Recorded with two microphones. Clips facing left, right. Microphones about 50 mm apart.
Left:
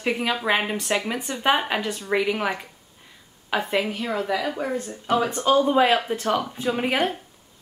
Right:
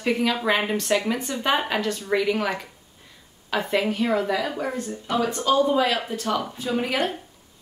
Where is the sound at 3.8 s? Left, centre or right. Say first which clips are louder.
Right 3 dB; centre.